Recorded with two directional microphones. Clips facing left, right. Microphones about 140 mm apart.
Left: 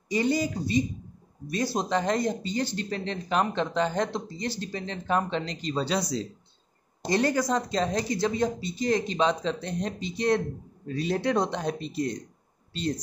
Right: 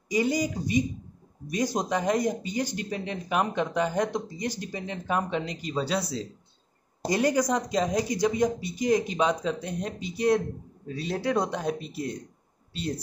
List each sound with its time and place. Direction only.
0.1 s speech: 10° right (ahead or behind)